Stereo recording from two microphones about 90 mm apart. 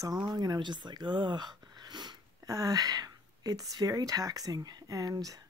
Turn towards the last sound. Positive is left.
turn(degrees=-45)  # may be behind; listen again after turning